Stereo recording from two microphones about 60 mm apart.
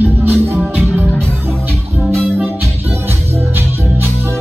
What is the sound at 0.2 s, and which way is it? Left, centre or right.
Music, right.